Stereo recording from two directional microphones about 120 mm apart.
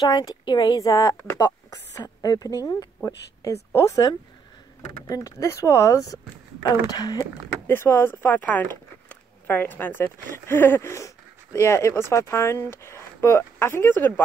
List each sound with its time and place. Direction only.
0.0 s a woman's voice: 35° left (ahead or behind)
7.6 s speech: 20° left (ahead or behind)